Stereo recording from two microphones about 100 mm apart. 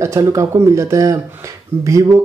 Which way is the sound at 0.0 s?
35° right (ahead or behind).